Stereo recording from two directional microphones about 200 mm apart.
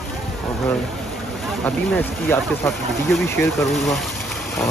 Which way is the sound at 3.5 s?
Centre (ahead or behind).